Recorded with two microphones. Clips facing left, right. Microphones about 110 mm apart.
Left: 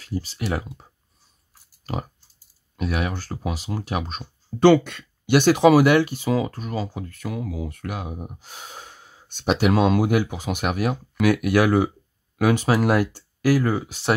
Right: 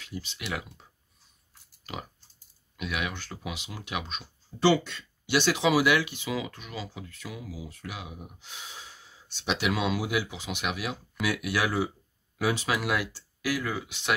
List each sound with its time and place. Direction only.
0.0 s speech: 40° left (ahead or behind)
1.9 s pig: 40° left (ahead or behind)
2.8 s speech: 40° left (ahead or behind)
4.6 s speech: 55° left (ahead or behind)
12.6 s speech: 40° left (ahead or behind)